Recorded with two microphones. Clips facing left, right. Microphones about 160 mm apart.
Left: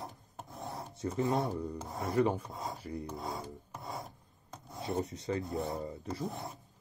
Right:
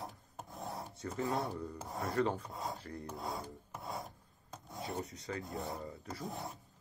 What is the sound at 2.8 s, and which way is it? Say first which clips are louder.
Speech: left 5 dB; 10° left (ahead or behind).